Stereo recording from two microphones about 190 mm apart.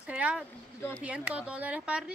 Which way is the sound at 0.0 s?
10° right (ahead or behind).